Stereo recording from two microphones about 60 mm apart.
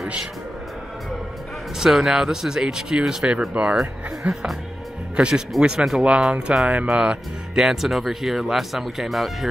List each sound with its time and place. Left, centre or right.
1.8 s speech: centre